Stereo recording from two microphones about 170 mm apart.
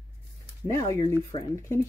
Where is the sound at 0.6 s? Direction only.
20° left (ahead or behind).